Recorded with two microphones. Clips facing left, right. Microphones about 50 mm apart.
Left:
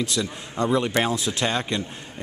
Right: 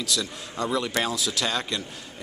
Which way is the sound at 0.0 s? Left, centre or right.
Left.